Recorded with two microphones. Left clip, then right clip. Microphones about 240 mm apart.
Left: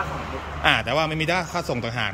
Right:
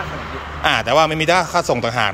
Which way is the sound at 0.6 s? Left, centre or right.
Centre.